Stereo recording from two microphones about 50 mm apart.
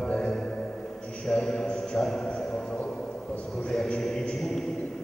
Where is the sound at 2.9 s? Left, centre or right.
Left.